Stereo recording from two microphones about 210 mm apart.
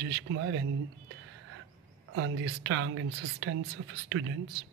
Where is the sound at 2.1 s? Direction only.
65° right (ahead or behind).